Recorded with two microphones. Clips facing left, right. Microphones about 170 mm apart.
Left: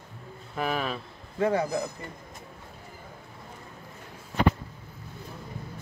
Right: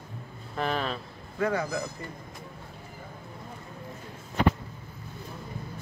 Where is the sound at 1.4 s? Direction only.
30° left (ahead or behind).